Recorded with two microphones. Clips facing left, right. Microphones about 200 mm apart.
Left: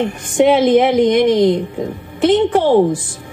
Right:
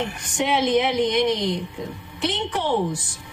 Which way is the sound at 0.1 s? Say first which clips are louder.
Left 11 dB; 55° left (ahead or behind).